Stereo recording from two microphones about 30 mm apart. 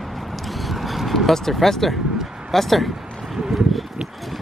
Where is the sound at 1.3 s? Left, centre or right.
Centre.